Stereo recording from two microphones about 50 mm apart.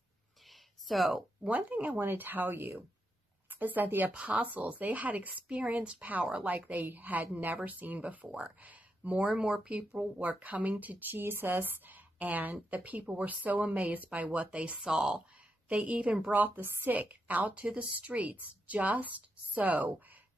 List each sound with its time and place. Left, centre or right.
0.5 s a sound: centre
1.5 s speech: right
2.0 s a woman's voice: right
4.1 s a woman's voice: right
9.3 s speech: centre
10.1 s a woman's voice: right
14.8 s speech: centre
15.7 s a woman's voice: right
16.3 s speech: right